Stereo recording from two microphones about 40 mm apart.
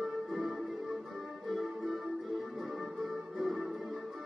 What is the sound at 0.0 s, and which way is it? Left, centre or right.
Music, centre.